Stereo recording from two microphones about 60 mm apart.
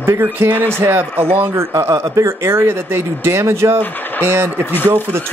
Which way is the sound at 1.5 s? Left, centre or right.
Right.